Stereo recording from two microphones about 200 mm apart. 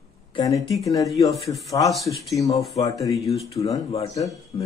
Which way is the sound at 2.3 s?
15° left (ahead or behind).